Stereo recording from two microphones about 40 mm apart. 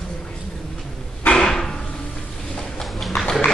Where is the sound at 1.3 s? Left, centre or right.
Centre.